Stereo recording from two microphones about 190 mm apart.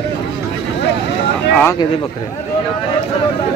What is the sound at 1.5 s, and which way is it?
Speech, 10° left (ahead or behind).